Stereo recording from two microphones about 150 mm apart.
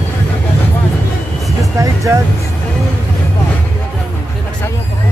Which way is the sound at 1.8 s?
20° right (ahead or behind).